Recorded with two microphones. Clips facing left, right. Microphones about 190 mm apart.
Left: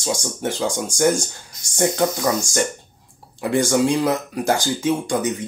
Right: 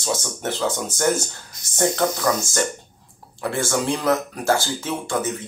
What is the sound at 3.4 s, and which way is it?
Speech, 15° left (ahead or behind).